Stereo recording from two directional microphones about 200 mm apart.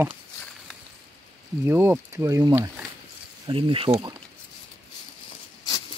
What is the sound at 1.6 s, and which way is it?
Speech, 10° right (ahead or behind).